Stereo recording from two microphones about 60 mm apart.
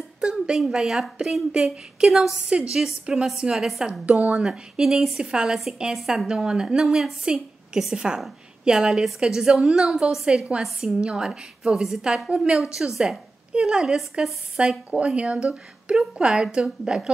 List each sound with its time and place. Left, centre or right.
0.2 s a sound: centre
0.6 s a woman's voice: centre
14.9 s a woman's voice: right